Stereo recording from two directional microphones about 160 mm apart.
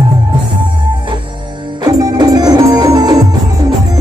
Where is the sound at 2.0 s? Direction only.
25° right (ahead or behind).